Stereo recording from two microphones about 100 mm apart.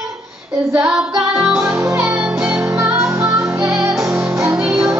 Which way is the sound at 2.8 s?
25° right (ahead or behind).